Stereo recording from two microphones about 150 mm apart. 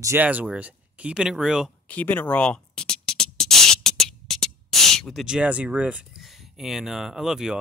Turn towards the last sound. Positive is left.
turn(degrees=-5)  # may be behind; listen again after turning